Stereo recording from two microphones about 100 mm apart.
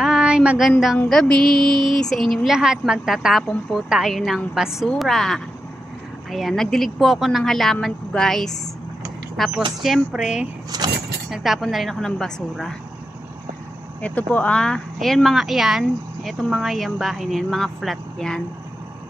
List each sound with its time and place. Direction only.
0.0 s child singing: 10° right (ahead or behind)
0.7 s speech: centre (ahead or behind)
10.7 s speech: 40° right (ahead or behind)
11.2 s speech: centre (ahead or behind)
14.0 s speech: 15° left (ahead or behind)